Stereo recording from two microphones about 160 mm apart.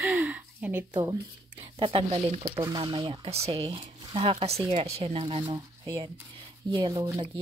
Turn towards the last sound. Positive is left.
turn(degrees=-25)  # may be behind; listen again after turning